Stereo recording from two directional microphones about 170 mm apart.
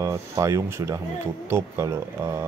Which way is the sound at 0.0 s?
15° right (ahead or behind).